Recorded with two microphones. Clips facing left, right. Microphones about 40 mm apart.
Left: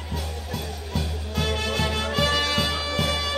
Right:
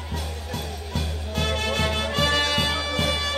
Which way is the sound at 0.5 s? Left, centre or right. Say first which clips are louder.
Left 1 dB; centre.